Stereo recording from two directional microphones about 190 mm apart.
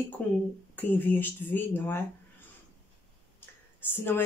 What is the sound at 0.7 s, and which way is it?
Speech, 10° left (ahead or behind).